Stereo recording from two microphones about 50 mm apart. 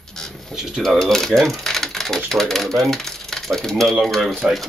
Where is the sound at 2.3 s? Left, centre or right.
Centre.